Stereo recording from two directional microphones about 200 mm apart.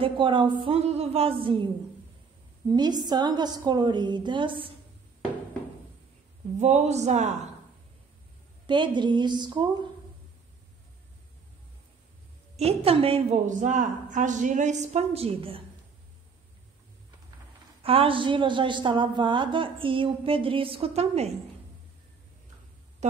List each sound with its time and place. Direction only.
0.0 s a woman's voice: 25° right (ahead or behind)
2.7 s a woman's voice: 20° right (ahead or behind)
6.6 s a woman's voice: 35° right (ahead or behind)
8.6 s a woman's voice: 25° right (ahead or behind)
12.5 s a woman's voice: 30° right (ahead or behind)
17.8 s a woman's voice: 25° right (ahead or behind)